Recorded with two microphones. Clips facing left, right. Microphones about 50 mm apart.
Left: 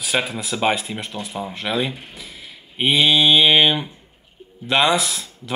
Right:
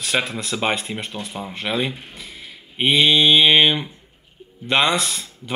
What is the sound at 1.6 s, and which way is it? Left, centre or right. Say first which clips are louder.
Speech: even; centre.